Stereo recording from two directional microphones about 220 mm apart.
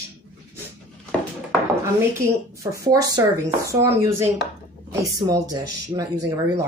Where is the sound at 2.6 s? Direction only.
15° right (ahead or behind).